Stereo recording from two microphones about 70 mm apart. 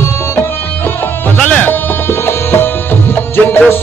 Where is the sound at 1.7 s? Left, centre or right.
Left.